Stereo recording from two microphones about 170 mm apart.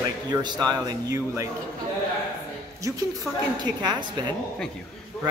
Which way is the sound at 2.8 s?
20° right (ahead or behind).